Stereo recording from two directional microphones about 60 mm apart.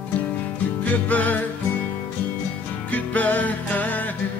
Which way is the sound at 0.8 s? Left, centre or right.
Left.